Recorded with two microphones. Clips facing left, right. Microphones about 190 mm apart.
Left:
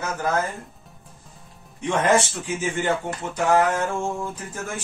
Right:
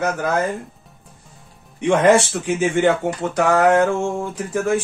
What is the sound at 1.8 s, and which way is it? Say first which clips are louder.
Speech: right 6 dB; 75° right (ahead or behind).